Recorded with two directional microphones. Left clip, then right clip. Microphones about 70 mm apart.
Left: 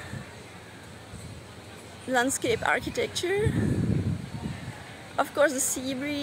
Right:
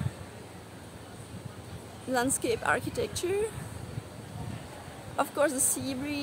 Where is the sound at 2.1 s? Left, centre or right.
Left.